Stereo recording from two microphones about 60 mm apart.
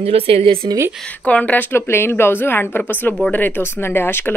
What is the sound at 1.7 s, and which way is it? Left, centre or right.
Speech, left.